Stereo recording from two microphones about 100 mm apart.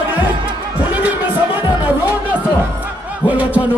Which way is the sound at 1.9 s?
15° right (ahead or behind).